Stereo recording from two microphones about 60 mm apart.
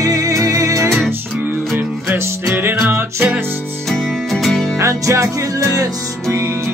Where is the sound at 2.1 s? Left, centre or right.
Right.